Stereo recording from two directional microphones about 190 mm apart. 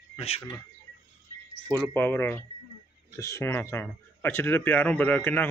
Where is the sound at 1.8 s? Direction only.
10° left (ahead or behind).